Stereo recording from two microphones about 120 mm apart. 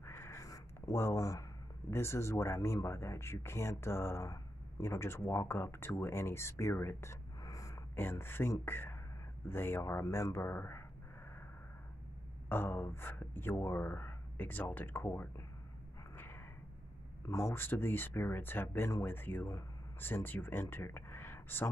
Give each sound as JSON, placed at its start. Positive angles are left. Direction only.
{"t": 0.0, "sound": "a sound", "side_deg": 20}
{"t": 1.9, "sound": "speech", "side_deg": 20}
{"t": 12.4, "sound": "speech", "side_deg": 20}
{"t": 17.3, "sound": "speech", "side_deg": 25}